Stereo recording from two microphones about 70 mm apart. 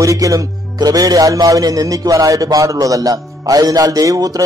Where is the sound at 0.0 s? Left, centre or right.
Right.